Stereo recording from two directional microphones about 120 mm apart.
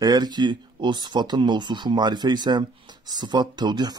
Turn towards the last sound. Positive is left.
turn(degrees=-35)  # may be behind; listen again after turning